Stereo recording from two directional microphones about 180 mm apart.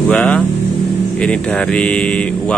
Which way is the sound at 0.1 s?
10° left (ahead or behind).